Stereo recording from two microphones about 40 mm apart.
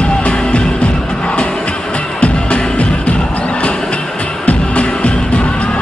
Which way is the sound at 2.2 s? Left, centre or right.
Left.